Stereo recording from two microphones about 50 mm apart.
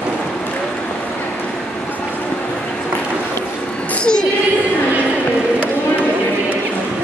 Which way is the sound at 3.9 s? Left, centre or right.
Centre.